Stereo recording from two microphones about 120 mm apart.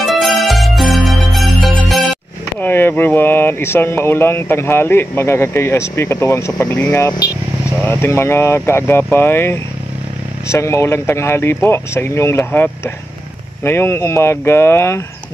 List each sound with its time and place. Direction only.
0.0 s music: centre (ahead or behind)
2.6 s speech: 15° left (ahead or behind)